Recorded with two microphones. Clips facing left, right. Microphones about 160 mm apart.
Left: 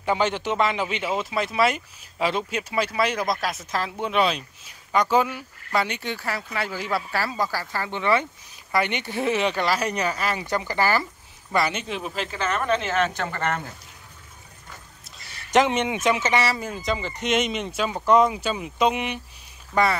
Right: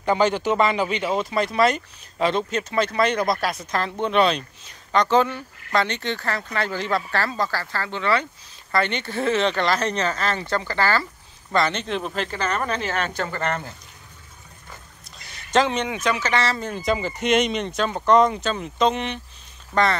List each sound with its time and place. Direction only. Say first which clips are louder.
0.0 s a man's voice: right 3 dB; 5° left (ahead or behind)
0.3 s a man's voice: right 4 dB; 40° right (ahead or behind)
0.8 s speech: right 3 dB; centre (ahead or behind)
15.5 s speech: left 1 dB; 20° left (ahead or behind)